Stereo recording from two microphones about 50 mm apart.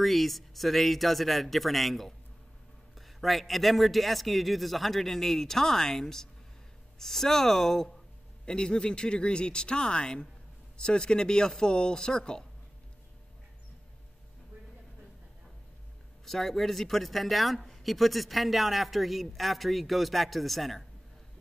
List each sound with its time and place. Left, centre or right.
0.0 s speech: centre
8.5 s speech: centre
16.3 s speech: centre